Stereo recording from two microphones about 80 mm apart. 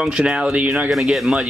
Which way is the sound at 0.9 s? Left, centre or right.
Centre.